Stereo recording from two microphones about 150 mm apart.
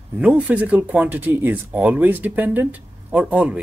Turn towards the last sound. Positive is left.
turn(degrees=-10)  # may be behind; listen again after turning